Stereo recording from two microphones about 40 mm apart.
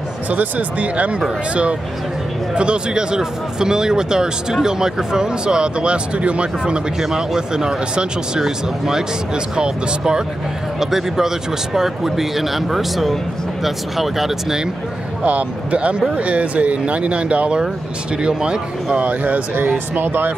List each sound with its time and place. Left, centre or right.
0.3 s speech: right
6.6 s speech: centre
10.8 s speech: centre
15.2 s speech: right
18.9 s speech: right
20.0 s speech: right